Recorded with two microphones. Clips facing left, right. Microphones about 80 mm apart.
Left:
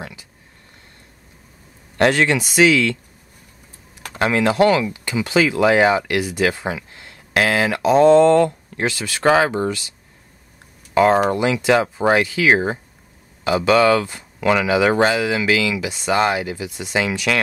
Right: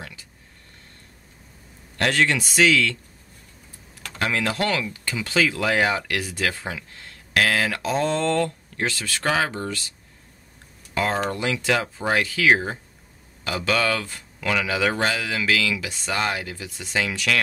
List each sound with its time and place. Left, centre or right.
0.0 s a sound: centre
2.0 s speech: left
4.2 s speech: left
11.0 s speech: left